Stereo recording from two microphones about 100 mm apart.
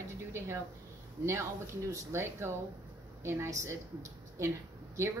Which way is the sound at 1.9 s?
25° right (ahead or behind).